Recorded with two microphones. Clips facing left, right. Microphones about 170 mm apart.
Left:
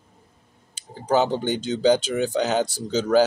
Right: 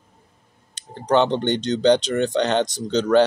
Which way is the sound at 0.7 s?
5° left (ahead or behind).